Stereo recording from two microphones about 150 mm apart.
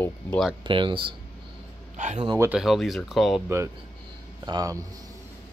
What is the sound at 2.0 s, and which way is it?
Speech, 50° right (ahead or behind).